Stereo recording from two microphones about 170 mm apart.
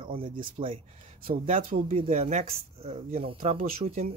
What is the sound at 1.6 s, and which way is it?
Speech, 50° right (ahead or behind).